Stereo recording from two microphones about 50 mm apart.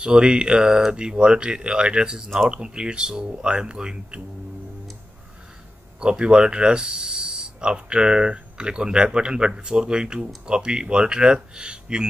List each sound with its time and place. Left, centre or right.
0.0 s speech: centre
5.9 s speech: centre